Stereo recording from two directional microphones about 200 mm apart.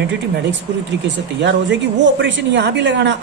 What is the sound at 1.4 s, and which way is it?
Speech, 60° right (ahead or behind).